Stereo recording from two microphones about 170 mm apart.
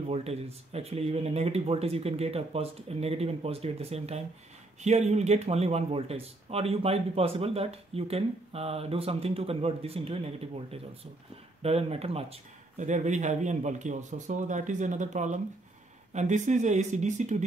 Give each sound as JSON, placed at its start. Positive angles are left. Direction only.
{"t": 0.1, "sound": "speech", "side_deg": -35}